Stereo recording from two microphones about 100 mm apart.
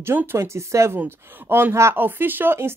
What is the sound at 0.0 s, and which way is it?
A woman's voice, 25° right (ahead or behind).